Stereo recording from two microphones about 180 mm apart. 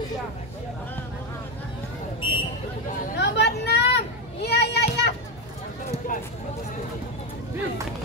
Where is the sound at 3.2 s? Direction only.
70° left (ahead or behind).